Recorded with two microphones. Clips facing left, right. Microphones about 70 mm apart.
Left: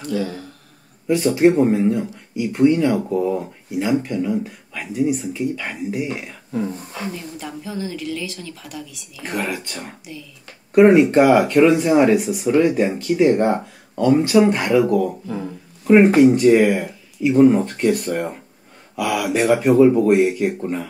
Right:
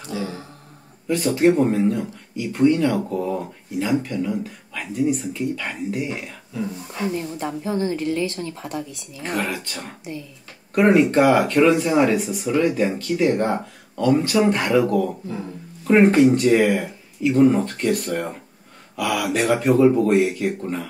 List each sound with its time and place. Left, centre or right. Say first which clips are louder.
0.2 s a sound: left 3 dB; right
1.0 s speech: left 3 dB; centre
6.5 s speech: left 4 dB; left
7.1 s a woman's voice: right 7 dB; right
9.2 s speech: even; centre